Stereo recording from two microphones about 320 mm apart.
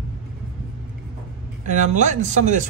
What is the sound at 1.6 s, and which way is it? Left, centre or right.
Speech, right.